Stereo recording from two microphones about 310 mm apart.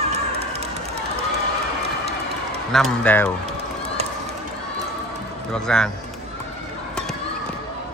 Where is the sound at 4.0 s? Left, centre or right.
Centre.